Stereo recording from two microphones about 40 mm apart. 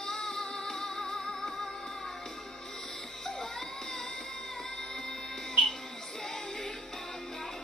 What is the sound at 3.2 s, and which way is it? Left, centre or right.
Music, centre.